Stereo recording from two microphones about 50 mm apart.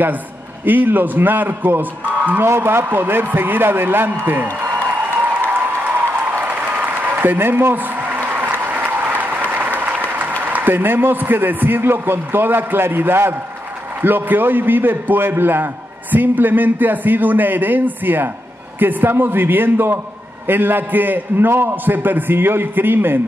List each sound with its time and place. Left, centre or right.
0.7 s a man's voice: right
2.4 s a man's voice: right
5.2 s applause: right
10.4 s a man's voice: right
21.5 s a man's voice: right